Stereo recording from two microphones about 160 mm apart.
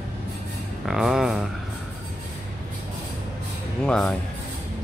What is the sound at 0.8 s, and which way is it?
Speech, 5° right (ahead or behind).